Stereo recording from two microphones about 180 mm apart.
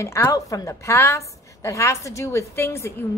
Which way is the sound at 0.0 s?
15° left (ahead or behind).